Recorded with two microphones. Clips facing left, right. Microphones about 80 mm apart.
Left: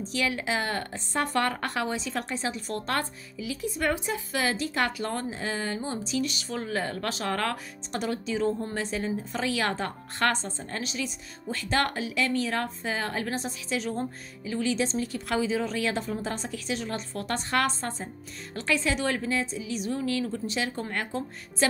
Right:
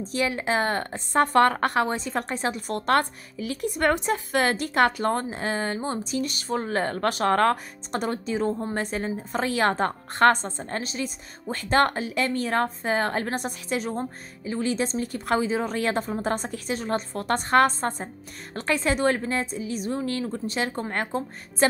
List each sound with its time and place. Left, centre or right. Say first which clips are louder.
0.0 s a woman's voice: right 3 dB; right